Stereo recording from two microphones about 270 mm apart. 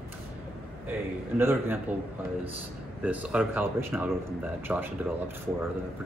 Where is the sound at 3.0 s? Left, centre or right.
Centre.